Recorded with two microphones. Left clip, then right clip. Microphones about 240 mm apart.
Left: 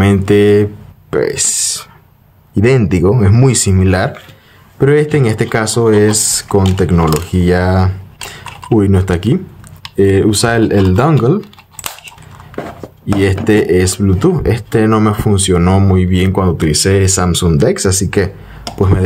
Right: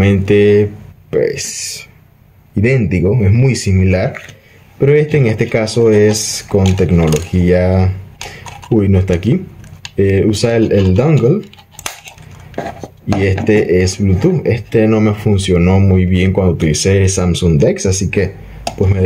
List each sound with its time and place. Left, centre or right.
0.0 s speech: left
13.2 s speech: left